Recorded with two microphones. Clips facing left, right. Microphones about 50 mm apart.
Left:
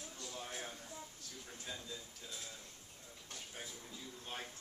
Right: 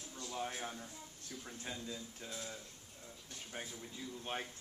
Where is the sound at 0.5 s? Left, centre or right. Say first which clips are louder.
Right 3 dB; centre.